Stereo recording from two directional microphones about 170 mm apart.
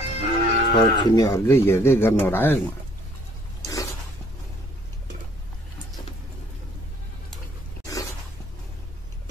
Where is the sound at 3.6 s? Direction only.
20° left (ahead or behind).